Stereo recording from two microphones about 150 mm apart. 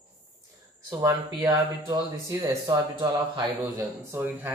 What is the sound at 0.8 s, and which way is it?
Speech, 25° right (ahead or behind).